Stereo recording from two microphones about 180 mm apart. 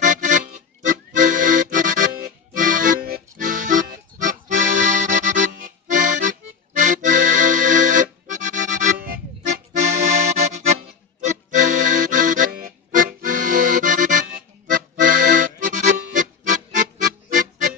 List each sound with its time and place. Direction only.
0.0 s accordion: 45° right (ahead or behind)